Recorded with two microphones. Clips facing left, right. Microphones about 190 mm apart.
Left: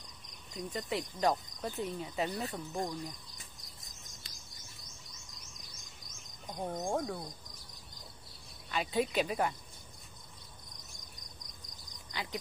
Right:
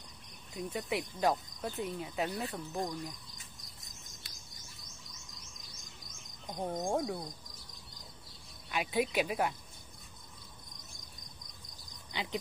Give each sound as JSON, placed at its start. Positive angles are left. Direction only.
{"t": 0.6, "sound": "cricket", "side_deg": -10}
{"t": 6.5, "sound": "speech", "side_deg": -20}
{"t": 8.6, "sound": "speech", "side_deg": -10}
{"t": 12.1, "sound": "cricket", "side_deg": -20}